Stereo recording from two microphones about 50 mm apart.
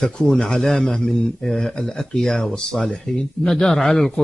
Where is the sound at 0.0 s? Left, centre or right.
Centre.